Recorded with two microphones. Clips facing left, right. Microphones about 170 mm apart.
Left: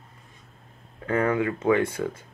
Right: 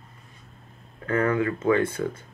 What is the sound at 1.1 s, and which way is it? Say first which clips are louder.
Speech: even; 15° left (ahead or behind).